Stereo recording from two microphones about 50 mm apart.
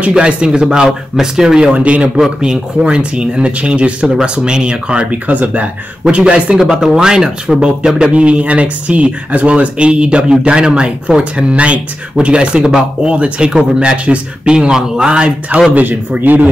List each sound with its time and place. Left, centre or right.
0.1 s speech: centre
6.6 s speech: centre
15.7 s speech: right